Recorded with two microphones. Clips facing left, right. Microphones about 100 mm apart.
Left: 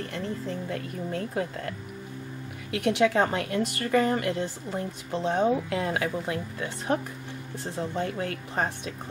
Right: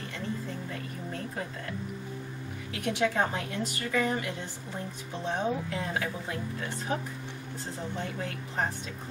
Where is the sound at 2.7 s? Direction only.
65° left (ahead or behind).